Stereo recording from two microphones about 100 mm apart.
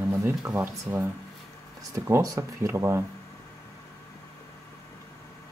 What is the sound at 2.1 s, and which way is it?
Speech, 30° right (ahead or behind).